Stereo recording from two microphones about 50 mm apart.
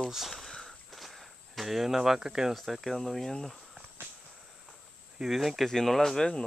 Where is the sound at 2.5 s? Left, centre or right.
Centre.